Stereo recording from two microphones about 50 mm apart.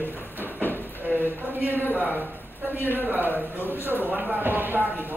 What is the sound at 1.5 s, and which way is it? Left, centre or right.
Speech, right.